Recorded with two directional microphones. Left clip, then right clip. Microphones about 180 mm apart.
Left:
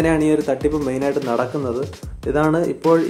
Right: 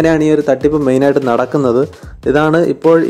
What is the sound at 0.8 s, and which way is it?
Speech, 40° right (ahead or behind).